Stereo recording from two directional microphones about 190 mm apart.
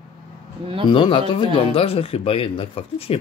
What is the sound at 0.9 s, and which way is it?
Speech, 25° left (ahead or behind).